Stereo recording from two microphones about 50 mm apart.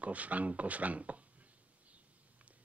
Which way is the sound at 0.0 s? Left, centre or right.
Right.